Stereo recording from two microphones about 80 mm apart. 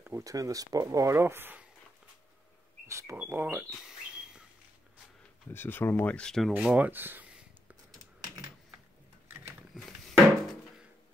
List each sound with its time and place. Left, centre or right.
0.2 s speech: right
1.1 s speech: right
2.9 s speech: right
3.2 s speech: right
3.8 s a sound: centre
5.5 s speech: left
6.1 s speech: centre
6.5 s speech: centre
9.8 s a sound: centre